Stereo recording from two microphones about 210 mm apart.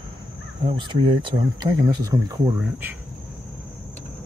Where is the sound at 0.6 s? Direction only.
20° right (ahead or behind).